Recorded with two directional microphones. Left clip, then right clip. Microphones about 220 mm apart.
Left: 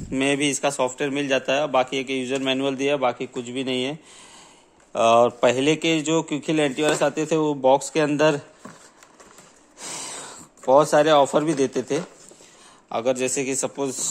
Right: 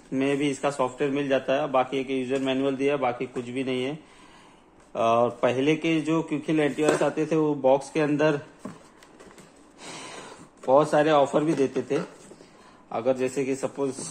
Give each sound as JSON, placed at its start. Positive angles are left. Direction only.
{"t": 0.1, "sound": "speech", "side_deg": 45}
{"t": 4.9, "sound": "speech", "side_deg": 40}
{"t": 9.8, "sound": "a sound", "side_deg": 45}
{"t": 12.9, "sound": "speech", "side_deg": 40}